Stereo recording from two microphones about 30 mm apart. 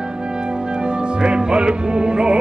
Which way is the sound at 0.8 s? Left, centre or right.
Right.